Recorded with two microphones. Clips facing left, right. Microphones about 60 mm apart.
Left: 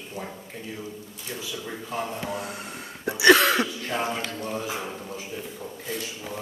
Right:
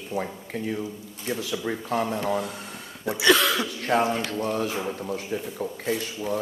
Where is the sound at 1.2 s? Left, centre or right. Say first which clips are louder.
Right 7 dB; right.